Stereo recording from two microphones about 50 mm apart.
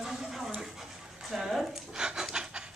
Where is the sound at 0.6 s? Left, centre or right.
Centre.